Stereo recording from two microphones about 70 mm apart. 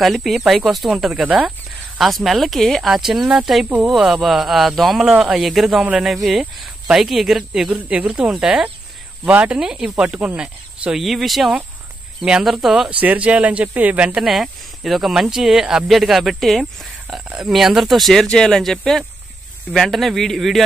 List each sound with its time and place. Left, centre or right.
0.0 s speech: centre
13.0 s speech: right
14.2 s speech: centre
17.2 s speech: centre